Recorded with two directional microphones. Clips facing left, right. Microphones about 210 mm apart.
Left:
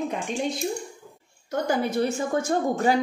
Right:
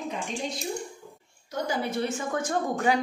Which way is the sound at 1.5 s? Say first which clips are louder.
Left 5 dB; 55° left (ahead or behind).